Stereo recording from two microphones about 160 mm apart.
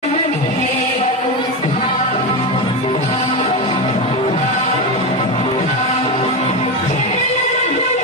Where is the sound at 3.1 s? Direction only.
35° left (ahead or behind).